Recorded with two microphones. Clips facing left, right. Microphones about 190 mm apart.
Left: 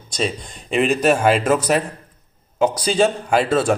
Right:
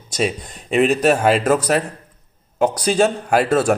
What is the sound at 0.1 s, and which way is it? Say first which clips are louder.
Speech: right 2 dB; 5° right (ahead or behind).